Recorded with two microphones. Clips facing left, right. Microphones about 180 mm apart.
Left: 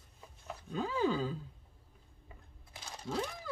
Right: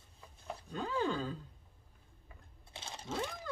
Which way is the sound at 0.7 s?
5° left (ahead or behind).